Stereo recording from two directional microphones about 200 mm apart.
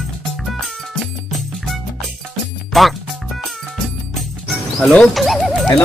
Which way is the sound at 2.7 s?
Centre (ahead or behind).